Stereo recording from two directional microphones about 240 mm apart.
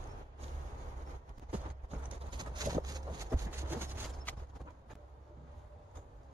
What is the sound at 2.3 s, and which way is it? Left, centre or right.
Vehicle, centre.